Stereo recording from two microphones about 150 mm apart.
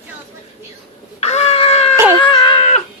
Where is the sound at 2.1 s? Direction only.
30° left (ahead or behind).